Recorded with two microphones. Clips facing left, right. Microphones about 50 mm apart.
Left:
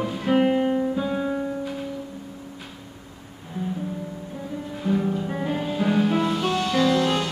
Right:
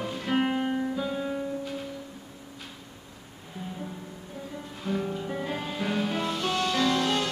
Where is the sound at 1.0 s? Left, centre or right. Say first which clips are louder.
Left 5 dB; centre.